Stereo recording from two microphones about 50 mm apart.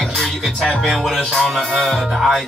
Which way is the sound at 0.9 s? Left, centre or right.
Centre.